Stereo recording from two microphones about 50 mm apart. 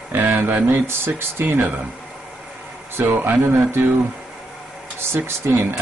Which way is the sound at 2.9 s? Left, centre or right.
Right.